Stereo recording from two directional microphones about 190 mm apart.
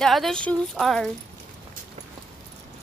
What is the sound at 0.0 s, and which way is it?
Speech, centre (ahead or behind).